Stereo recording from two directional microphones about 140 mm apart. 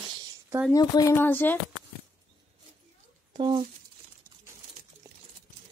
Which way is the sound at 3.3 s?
35° right (ahead or behind).